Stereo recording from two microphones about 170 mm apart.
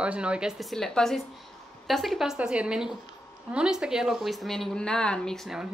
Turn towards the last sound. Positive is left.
turn(degrees=0)  # may be behind; listen again after turning